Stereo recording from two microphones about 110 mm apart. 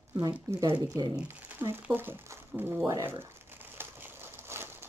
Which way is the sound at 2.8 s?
25° right (ahead or behind).